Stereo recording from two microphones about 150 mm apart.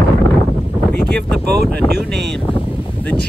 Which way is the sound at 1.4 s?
90° right.